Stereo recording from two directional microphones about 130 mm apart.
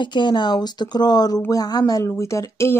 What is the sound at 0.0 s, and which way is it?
Speech, 35° left (ahead or behind).